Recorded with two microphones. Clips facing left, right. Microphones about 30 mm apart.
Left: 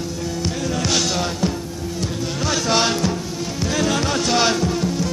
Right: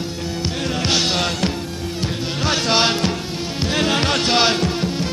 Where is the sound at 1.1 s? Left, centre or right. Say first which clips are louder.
Right 2 dB; right.